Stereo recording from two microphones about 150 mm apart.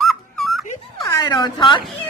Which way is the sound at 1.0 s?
25° left (ahead or behind).